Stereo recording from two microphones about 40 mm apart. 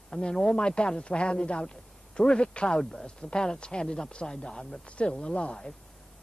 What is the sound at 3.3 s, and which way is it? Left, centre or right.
Speech, left.